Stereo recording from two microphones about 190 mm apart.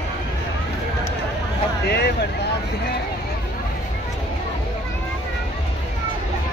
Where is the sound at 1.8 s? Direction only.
60° left (ahead or behind).